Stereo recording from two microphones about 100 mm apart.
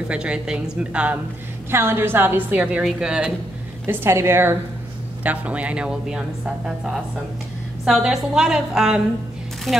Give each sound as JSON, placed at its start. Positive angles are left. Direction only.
{"t": 0.1, "sound": "a woman's voice", "side_deg": -10}
{"t": 1.7, "sound": "a woman's voice", "side_deg": -25}
{"t": 2.8, "sound": "a woman's voice", "side_deg": -5}
{"t": 3.8, "sound": "a woman's voice", "side_deg": -25}